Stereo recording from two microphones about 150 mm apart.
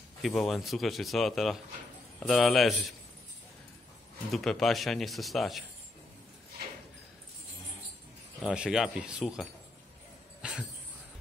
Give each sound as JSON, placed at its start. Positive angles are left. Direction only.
{"t": 0.2, "sound": "speech", "side_deg": 0}
{"t": 4.3, "sound": "speech", "side_deg": 0}
{"t": 8.4, "sound": "speech", "side_deg": -5}
{"t": 10.4, "sound": "a sound", "side_deg": -5}